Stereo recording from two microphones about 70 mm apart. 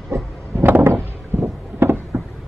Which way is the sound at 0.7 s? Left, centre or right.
Right.